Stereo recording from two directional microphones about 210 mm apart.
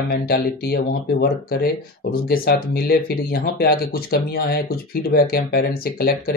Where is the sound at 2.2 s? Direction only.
45° left (ahead or behind).